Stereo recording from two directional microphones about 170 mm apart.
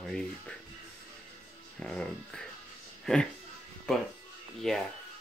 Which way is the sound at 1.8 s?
5° left (ahead or behind).